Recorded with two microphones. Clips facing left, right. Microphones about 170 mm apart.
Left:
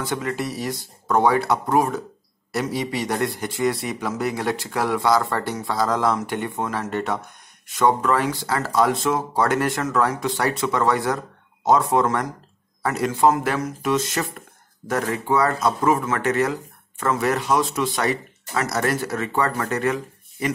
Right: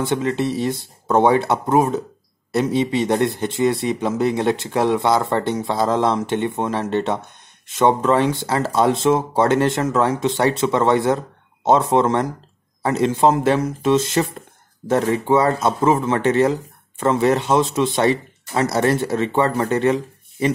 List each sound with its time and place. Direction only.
0.0 s a man's voice: 25° right (ahead or behind)